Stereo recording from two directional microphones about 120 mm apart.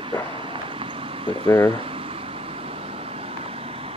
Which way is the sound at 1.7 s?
50° right (ahead or behind).